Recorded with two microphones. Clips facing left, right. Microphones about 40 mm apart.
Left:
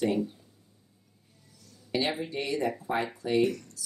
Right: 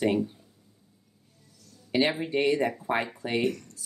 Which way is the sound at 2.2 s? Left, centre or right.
Right.